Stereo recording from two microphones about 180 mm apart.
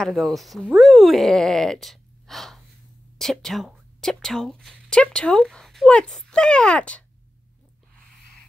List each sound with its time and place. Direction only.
0.0 s speech: centre (ahead or behind)